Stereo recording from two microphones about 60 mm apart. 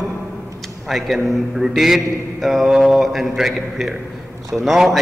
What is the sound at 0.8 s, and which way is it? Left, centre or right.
A man's voice, centre.